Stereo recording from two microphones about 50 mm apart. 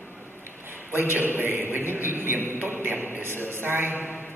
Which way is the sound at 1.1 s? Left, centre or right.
Right.